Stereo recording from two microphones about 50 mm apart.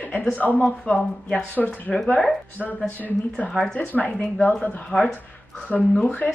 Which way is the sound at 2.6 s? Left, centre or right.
Left.